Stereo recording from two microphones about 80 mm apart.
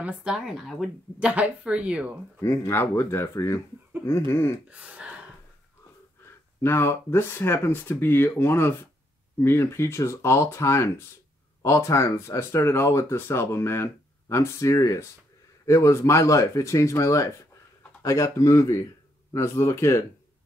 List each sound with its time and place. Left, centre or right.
0.0 s a woman's voice: centre
1.2 s a woman's voice: centre
2.4 s speech: left
4.3 s speech: left
4.6 s speech: centre
6.6 s speech: left